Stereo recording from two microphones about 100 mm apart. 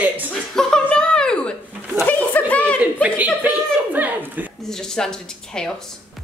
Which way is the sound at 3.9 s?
15° right (ahead or behind).